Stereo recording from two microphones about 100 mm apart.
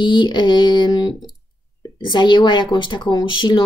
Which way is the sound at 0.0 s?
50° left (ahead or behind).